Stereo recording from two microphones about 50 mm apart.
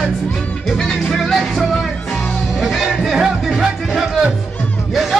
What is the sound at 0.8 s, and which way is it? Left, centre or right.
Music, centre.